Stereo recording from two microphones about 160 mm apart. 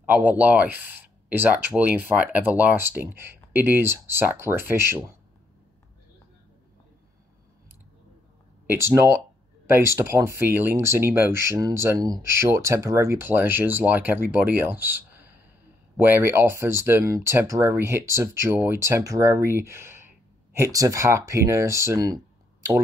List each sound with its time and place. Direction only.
0.0 s speech: 10° right (ahead or behind)
8.6 s speech: 15° right (ahead or behind)